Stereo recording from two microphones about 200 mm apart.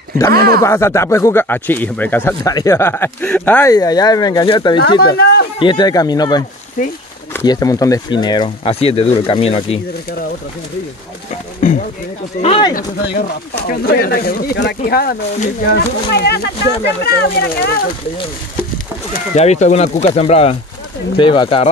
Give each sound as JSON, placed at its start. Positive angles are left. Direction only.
{"t": 0.3, "sound": "speech", "side_deg": -50}
{"t": 0.6, "sound": "speech", "side_deg": 15}
{"t": 6.8, "sound": "speech", "side_deg": 45}
{"t": 7.4, "sound": "speech", "side_deg": 20}
{"t": 11.6, "sound": "a sound", "side_deg": 40}
{"t": 12.4, "sound": "speech", "side_deg": 30}
{"t": 12.7, "sound": "speech", "side_deg": 55}
{"t": 19.1, "sound": "speech", "side_deg": 35}